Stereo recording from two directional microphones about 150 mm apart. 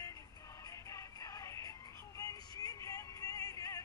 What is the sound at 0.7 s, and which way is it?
Music, 20° left (ahead or behind).